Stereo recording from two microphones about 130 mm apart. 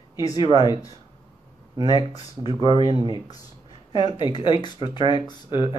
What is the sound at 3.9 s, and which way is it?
Speech, 35° left (ahead or behind).